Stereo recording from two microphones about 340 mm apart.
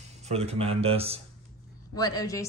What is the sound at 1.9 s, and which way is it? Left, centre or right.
Speech, centre.